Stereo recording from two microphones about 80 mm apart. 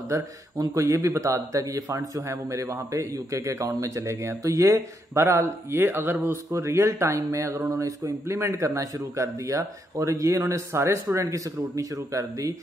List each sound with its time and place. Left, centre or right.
0.1 s a man's voice: right